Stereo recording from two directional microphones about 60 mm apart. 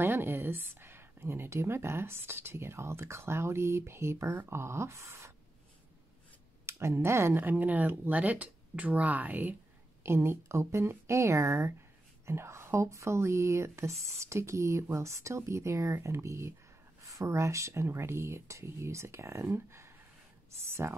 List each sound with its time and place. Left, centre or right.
0.0 s a woman's voice: right
6.6 s speech: right
7.3 s speech: right
10.0 s a woman's voice: right
17.0 s a woman's voice: right
19.5 s a sound: right
20.8 s speech: right